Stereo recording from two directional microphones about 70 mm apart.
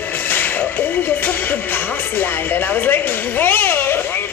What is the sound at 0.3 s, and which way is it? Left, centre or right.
Music, left.